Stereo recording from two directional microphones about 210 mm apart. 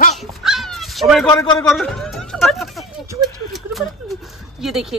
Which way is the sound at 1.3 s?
20° left (ahead or behind).